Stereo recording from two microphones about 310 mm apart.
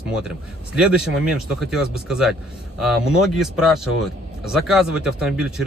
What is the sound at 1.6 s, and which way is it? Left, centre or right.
Speech, centre.